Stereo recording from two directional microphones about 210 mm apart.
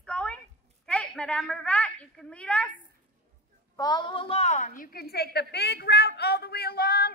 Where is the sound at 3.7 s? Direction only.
20° left (ahead or behind).